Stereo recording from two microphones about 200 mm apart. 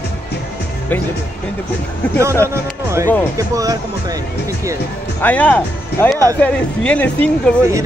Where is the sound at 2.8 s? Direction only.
15° right (ahead or behind).